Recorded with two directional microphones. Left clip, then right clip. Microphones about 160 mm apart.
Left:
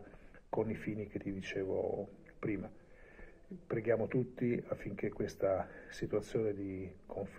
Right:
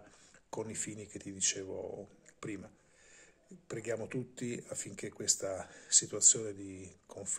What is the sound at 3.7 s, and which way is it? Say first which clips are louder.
Speech: left 5 dB; 40° right (ahead or behind).